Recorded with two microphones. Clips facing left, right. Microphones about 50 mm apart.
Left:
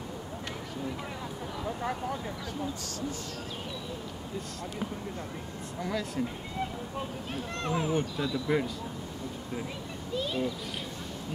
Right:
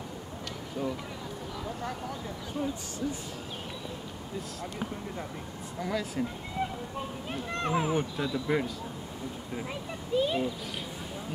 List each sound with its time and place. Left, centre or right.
5.8 s speech: centre
7.5 s speech: centre
10.1 s speech: centre